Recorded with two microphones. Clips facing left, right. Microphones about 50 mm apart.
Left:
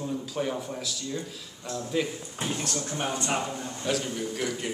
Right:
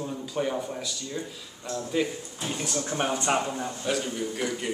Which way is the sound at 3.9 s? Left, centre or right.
Centre.